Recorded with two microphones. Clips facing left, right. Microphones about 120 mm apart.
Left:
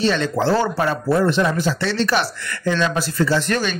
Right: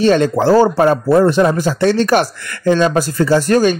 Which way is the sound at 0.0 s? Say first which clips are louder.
Right 7 dB; 45° right (ahead or behind).